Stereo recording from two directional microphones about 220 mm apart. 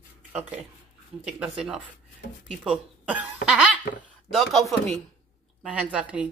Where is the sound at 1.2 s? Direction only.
5° right (ahead or behind).